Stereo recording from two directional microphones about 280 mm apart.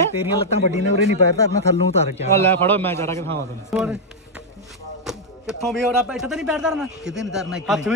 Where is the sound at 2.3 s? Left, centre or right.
Centre.